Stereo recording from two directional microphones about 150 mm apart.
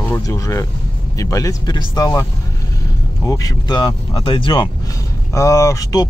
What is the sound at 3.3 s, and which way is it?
Speech, 25° left (ahead or behind).